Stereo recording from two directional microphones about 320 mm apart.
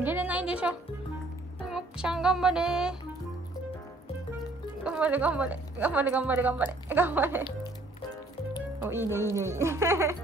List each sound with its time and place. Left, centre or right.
0.0 s music: centre
1.7 s a woman's voice: centre
4.8 s a woman's voice: centre
8.8 s speech: centre